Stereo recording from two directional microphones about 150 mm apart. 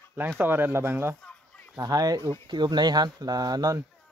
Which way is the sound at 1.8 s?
25° right (ahead or behind).